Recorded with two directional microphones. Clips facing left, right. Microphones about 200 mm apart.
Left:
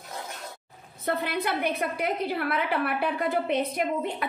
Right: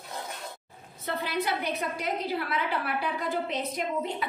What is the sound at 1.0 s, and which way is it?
A woman's voice, 55° left (ahead or behind).